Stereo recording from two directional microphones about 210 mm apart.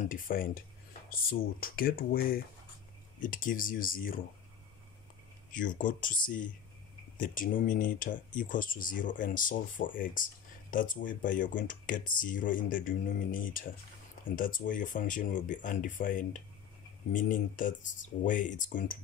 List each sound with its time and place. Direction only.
0.0 s speech: 40° left (ahead or behind)
5.5 s speech: 40° left (ahead or behind)